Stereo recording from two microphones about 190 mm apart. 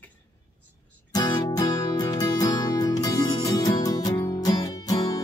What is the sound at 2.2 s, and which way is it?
Music, 20° left (ahead or behind).